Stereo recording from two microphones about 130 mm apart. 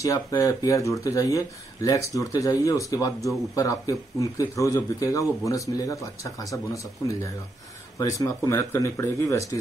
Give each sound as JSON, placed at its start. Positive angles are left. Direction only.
{"t": 0.0, "sound": "speech", "side_deg": 25}